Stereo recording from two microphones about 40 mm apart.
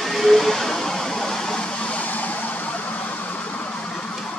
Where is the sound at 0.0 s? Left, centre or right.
Centre; by 3.3 s left.